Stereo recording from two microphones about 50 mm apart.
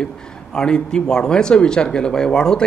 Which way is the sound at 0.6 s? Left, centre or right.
Centre.